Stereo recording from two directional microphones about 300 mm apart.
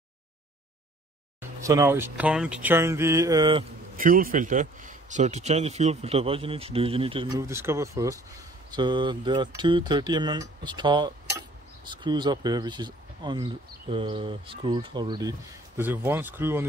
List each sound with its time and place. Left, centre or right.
1.4 s speech: centre
3.9 s a man's voice: right; by 16.6 s centre